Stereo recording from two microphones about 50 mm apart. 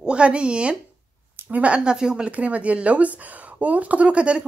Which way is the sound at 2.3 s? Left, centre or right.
Right.